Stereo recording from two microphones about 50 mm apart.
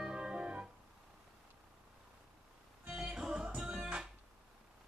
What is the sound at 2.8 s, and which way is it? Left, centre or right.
Music, centre.